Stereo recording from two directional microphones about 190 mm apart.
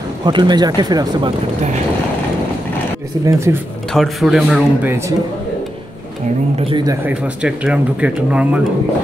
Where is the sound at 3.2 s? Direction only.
15° right (ahead or behind).